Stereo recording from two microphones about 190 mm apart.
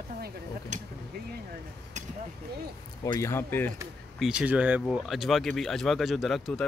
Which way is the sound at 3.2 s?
10° left (ahead or behind).